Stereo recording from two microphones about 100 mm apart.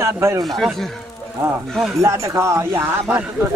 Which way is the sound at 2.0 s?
30° right (ahead or behind).